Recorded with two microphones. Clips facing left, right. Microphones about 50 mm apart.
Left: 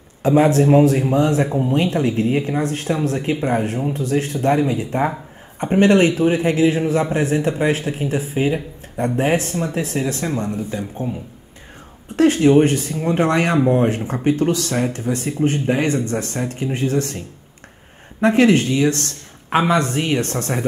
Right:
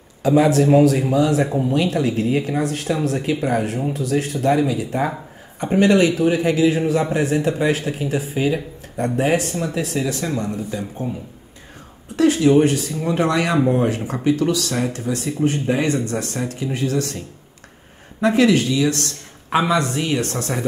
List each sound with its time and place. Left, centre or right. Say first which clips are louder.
0.2 s speech: left 1 dB; left
12.2 s speech: left 1 dB; left
18.2 s speech: left 1 dB; left